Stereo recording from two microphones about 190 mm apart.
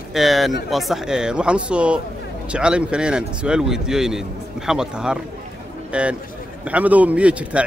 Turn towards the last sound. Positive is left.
turn(degrees=-5)  # may be behind; listen again after turning